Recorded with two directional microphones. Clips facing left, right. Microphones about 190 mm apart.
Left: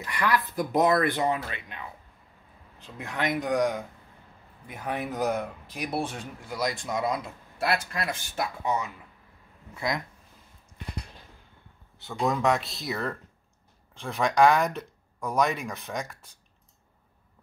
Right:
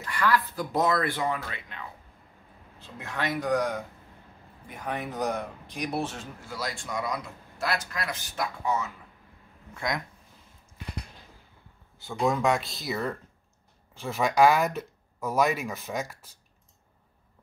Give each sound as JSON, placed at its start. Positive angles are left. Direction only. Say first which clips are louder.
{"t": 0.0, "sound": "speech", "louder": "right 1 dB", "side_deg": 20}
{"t": 2.8, "sound": "speech", "louder": "left 2 dB", "side_deg": 15}
{"t": 4.6, "sound": "speech", "louder": "left 2 dB", "side_deg": 5}
{"t": 9.8, "sound": "speech", "louder": "left 1 dB", "side_deg": 0}
{"t": 12.0, "sound": "speech", "louder": "right 1 dB", "side_deg": 0}